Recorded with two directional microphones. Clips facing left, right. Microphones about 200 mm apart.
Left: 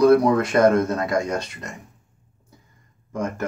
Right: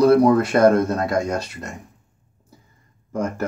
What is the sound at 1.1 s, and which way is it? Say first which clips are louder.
Speech: right 1 dB; centre (ahead or behind).